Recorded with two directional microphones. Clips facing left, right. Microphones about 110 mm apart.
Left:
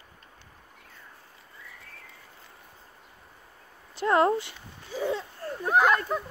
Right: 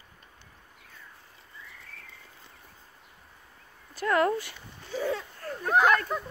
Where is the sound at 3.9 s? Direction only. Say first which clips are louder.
Left 3 dB; 25° left (ahead or behind).